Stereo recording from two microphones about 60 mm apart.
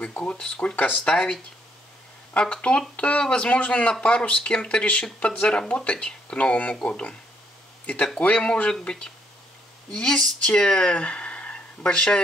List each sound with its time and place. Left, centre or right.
0.1 s speech: left